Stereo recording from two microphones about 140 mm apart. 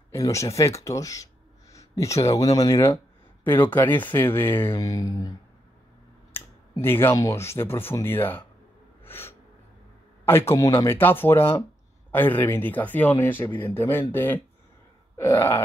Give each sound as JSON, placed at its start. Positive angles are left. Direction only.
{"t": 0.1, "sound": "speech", "side_deg": 20}
{"t": 6.3, "sound": "speech", "side_deg": 15}
{"t": 9.0, "sound": "gasp", "side_deg": 15}
{"t": 10.2, "sound": "speech", "side_deg": 15}